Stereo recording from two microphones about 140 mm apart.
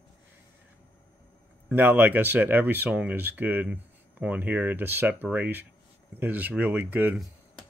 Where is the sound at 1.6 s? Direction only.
15° right (ahead or behind).